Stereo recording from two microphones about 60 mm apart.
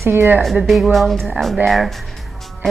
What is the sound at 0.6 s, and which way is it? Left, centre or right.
A woman's voice, centre.